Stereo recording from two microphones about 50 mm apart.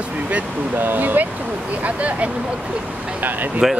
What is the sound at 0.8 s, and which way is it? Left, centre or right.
Speech, right.